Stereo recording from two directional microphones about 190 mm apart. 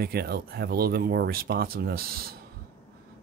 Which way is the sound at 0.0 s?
55° right (ahead or behind).